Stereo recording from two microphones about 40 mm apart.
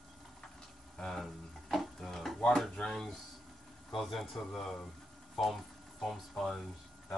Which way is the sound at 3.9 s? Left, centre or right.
Centre.